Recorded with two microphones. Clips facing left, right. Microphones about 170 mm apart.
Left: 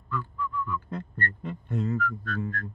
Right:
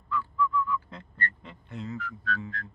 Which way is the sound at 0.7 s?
50° left (ahead or behind).